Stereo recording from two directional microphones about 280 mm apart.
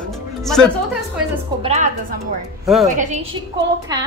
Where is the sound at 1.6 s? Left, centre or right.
Right.